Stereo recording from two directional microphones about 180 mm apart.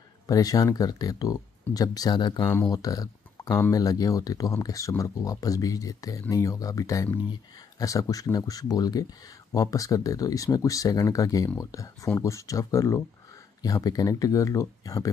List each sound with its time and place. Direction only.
0.3 s speech: 20° left (ahead or behind)